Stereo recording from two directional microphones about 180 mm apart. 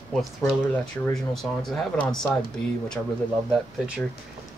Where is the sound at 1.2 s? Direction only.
Centre (ahead or behind).